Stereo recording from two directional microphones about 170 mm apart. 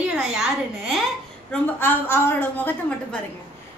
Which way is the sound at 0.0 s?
5° right (ahead or behind).